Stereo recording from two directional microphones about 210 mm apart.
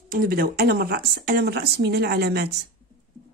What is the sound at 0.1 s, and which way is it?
Speech, 45° right (ahead or behind).